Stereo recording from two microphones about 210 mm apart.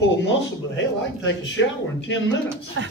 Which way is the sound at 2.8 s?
60° right (ahead or behind).